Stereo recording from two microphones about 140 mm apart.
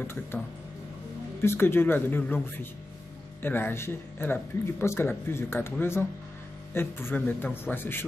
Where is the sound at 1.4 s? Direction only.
15° left (ahead or behind).